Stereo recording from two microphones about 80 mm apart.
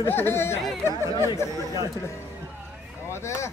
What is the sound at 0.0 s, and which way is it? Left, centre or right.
Speech, left.